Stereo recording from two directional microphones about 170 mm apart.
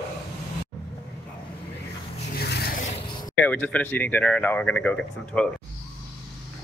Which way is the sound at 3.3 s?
10° left (ahead or behind).